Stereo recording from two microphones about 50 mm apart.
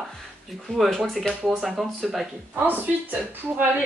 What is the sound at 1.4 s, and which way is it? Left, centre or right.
Speech, centre.